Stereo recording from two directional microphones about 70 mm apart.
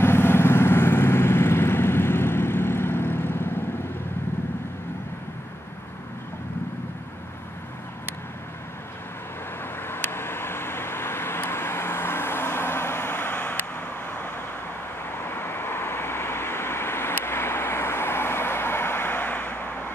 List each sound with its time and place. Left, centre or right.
0.0 s vehicle: left
9.8 s vehicle: left